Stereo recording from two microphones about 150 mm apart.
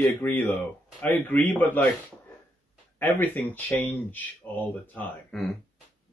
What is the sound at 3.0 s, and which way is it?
Speech, 15° left (ahead or behind).